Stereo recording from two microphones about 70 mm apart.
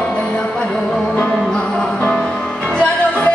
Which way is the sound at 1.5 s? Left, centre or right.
Centre.